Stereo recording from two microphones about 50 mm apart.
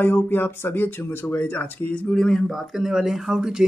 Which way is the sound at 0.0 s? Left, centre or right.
Left.